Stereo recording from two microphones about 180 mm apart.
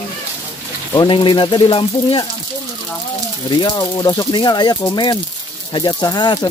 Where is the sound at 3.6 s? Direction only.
25° left (ahead or behind).